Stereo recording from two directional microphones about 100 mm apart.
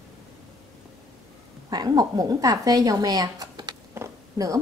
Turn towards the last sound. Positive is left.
turn(degrees=-35)  # may be behind; listen again after turning